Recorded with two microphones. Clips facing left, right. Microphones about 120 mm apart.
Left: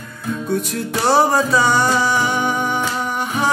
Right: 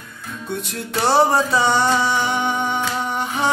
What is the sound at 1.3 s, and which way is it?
Music, 25° right (ahead or behind).